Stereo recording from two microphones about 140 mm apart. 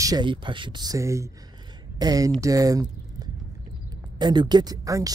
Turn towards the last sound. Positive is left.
turn(degrees=-25)  # may be behind; listen again after turning